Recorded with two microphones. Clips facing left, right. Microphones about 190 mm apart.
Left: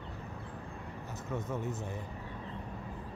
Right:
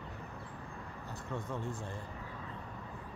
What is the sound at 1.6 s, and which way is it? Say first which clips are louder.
Speech: left 3 dB; 20° left (ahead or behind).